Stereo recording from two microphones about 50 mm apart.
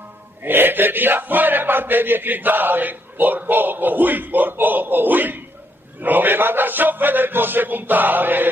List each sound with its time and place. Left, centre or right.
0.4 s speech: right